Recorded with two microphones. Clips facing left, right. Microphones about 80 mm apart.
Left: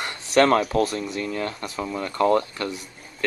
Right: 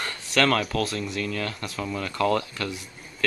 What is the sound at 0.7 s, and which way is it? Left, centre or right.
Speech, left.